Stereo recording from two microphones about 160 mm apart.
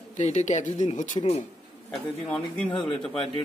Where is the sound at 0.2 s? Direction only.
45° left (ahead or behind).